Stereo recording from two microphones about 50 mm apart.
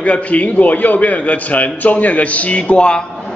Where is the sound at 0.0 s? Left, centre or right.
Left.